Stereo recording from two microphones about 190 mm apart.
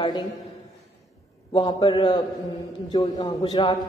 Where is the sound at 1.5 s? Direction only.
25° left (ahead or behind).